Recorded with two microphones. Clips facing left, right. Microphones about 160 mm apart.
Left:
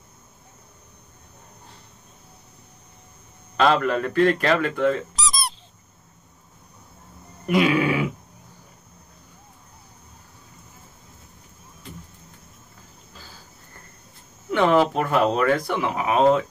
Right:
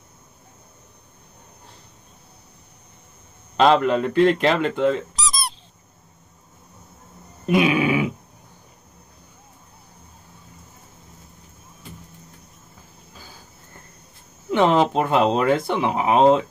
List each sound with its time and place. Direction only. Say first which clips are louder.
3.5 s speech: right 3 dB; 20° right (ahead or behind)
5.1 s squeak: even; centre (ahead or behind)
7.4 s dog: right 1 dB; 20° right (ahead or behind)
14.5 s speech: right 1 dB; 20° right (ahead or behind)